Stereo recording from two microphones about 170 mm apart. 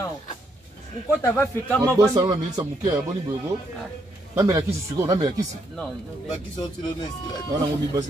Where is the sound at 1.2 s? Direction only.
15° left (ahead or behind).